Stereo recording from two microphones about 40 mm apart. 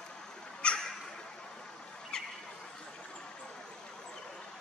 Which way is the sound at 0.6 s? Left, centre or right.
Left.